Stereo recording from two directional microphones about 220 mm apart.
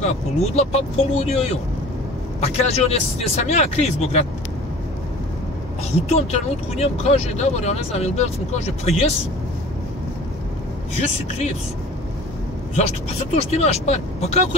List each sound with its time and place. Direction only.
0.0 s speech: 30° left (ahead or behind)
6.0 s speech: 30° left (ahead or behind)
12.7 s speech: 30° left (ahead or behind)